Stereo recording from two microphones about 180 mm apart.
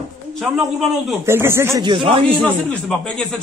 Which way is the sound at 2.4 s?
5° left (ahead or behind).